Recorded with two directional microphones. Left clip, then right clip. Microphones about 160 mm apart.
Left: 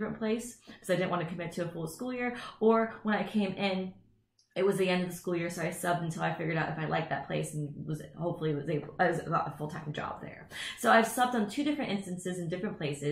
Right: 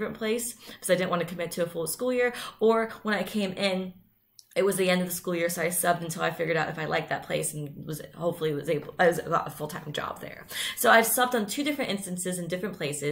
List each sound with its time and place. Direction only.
0.0 s speech: 15° right (ahead or behind)